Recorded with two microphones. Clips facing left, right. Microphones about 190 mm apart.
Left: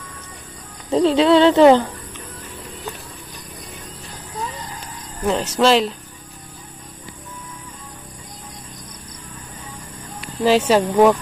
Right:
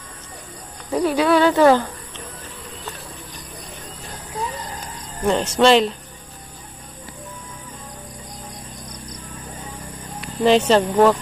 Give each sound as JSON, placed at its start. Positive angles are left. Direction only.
{"t": 0.8, "sound": "a child's voice", "side_deg": 25}
{"t": 5.2, "sound": "speech", "side_deg": 5}
{"t": 10.4, "sound": "speech", "side_deg": 5}